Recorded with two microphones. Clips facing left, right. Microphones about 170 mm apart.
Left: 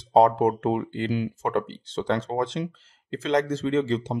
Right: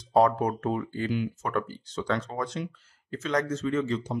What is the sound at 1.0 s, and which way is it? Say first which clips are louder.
Speech: left 3 dB; 25° left (ahead or behind).